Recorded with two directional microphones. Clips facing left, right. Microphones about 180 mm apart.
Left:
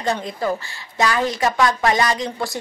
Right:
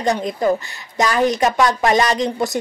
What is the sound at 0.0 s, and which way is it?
A woman's voice, 20° right (ahead or behind).